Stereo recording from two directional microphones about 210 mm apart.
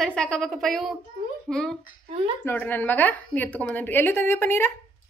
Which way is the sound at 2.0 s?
25° right (ahead or behind).